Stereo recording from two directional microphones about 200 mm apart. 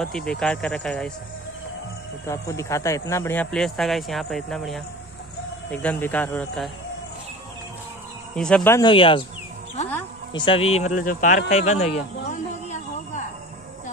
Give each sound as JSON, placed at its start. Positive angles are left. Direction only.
{"t": 0.0, "sound": "speech", "side_deg": 5}
{"t": 2.2, "sound": "speech", "side_deg": 15}
{"t": 8.4, "sound": "speech", "side_deg": 5}
{"t": 8.7, "sound": "speech", "side_deg": 25}
{"t": 10.3, "sound": "speech", "side_deg": 25}
{"t": 12.3, "sound": "a sound", "side_deg": 40}